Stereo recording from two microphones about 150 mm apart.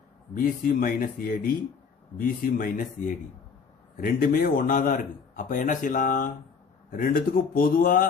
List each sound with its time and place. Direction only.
0.3 s a man's voice: 70° left (ahead or behind)